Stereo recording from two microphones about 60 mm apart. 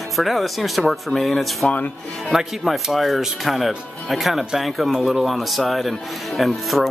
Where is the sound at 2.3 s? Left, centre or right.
Centre.